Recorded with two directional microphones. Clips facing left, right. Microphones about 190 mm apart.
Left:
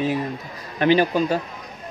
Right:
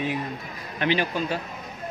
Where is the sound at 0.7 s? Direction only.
40° left (ahead or behind).